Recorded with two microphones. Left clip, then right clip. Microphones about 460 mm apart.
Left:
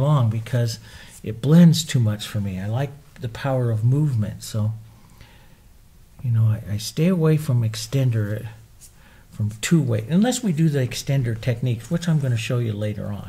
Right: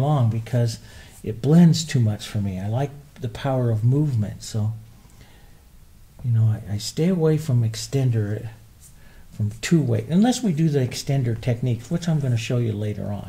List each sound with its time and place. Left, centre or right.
0.0 s speech: left
4.2 s speech: left
6.3 s speech: left
9.6 s speech: left